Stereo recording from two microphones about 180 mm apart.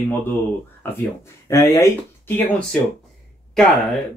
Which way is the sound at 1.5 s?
15° left (ahead or behind).